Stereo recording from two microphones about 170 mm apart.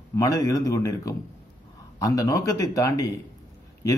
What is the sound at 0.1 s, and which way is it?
A man's voice, 20° left (ahead or behind).